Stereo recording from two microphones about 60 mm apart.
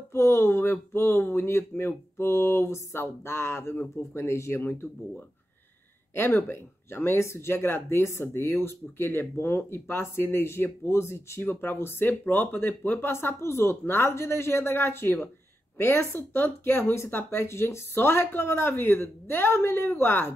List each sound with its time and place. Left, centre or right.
0.1 s speech: left
6.1 s speech: left
17.1 s speech: left
17.5 s speech: left